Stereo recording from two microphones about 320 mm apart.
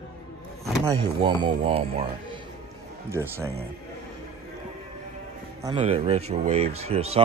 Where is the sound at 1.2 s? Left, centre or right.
Centre.